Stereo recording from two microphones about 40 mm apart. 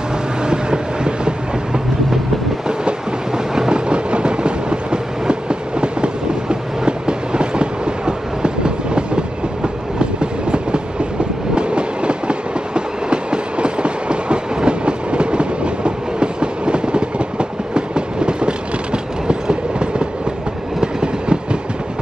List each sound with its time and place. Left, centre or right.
0.4 s train: right
3.5 s train: centre
11.5 s train: right